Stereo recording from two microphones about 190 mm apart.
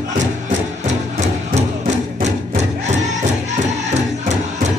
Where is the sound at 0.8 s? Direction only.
35° right (ahead or behind).